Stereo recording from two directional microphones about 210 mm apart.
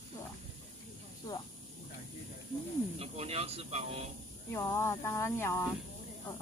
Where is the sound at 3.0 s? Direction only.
30° right (ahead or behind).